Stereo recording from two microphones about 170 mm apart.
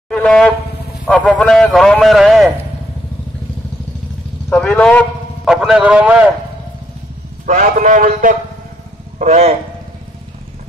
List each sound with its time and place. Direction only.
0.1 s shofar: 5° left (ahead or behind)
1.0 s a man's voice: 5° left (ahead or behind)
4.5 s a man's voice: 5° left (ahead or behind)
5.4 s a man's voice: 5° right (ahead or behind)
7.6 s a man's voice: 55° right (ahead or behind)